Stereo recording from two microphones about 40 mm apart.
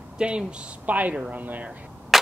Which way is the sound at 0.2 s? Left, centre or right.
Right.